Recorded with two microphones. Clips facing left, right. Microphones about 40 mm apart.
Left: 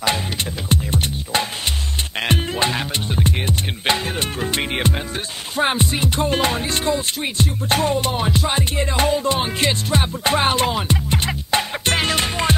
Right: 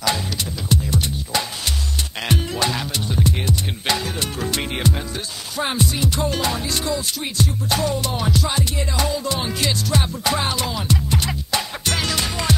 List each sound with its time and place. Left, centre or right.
0.7 s music: left